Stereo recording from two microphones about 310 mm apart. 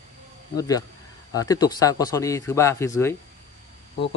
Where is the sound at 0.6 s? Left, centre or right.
Centre.